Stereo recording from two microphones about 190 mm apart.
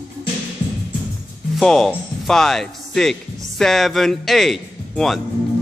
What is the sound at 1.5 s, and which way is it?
Speech, centre (ahead or behind).